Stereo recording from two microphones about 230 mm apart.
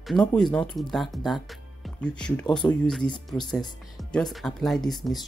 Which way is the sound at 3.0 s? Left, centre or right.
Centre.